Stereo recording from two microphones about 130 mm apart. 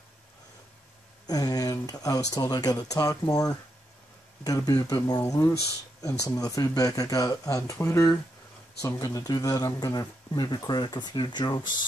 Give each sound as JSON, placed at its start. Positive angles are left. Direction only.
{"t": 1.2, "sound": "speech", "side_deg": 30}